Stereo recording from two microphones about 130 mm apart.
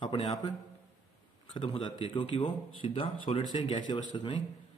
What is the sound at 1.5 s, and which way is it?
Speech, 40° left (ahead or behind).